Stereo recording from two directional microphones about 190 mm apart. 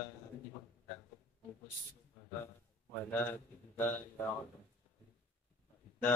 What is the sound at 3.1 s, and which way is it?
Speech, 10° left (ahead or behind).